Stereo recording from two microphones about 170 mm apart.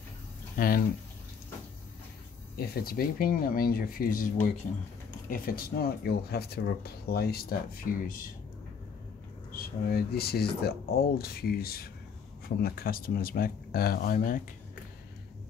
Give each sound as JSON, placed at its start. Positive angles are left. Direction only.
{"t": 0.6, "sound": "speech", "side_deg": 55}
{"t": 2.5, "sound": "speech", "side_deg": 60}
{"t": 9.5, "sound": "speech", "side_deg": 60}